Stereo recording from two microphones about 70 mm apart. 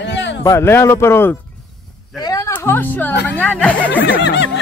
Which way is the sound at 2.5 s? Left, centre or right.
Left.